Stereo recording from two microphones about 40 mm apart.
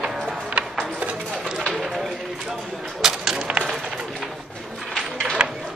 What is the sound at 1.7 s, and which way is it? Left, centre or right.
Run, centre.